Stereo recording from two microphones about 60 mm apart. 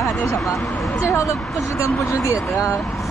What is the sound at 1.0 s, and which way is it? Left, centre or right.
Speech, left.